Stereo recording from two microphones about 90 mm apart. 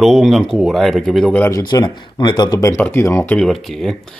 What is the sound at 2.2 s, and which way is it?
Speech, 55° left (ahead or behind).